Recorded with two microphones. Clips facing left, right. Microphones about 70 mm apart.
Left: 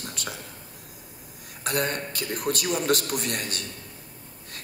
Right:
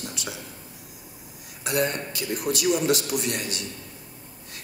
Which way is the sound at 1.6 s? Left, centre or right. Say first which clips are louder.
Right 2 dB; left.